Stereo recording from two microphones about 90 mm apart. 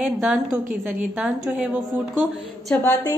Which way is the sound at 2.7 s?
20° left (ahead or behind).